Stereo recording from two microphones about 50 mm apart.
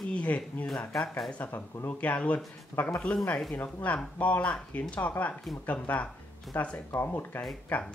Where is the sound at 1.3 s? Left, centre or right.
Left.